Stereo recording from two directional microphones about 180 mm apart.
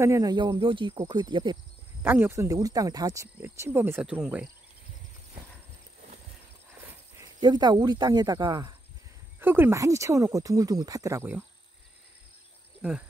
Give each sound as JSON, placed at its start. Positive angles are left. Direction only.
{"t": 0.0, "sound": "speech", "side_deg": -15}
{"t": 2.0, "sound": "speech", "side_deg": -10}
{"t": 7.3, "sound": "speech", "side_deg": -25}
{"t": 9.4, "sound": "speech", "side_deg": -10}